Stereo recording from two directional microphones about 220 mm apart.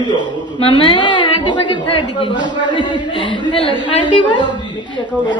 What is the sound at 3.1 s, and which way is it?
A woman's voice, 25° left (ahead or behind).